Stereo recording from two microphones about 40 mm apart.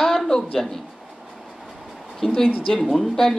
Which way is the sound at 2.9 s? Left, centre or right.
Centre.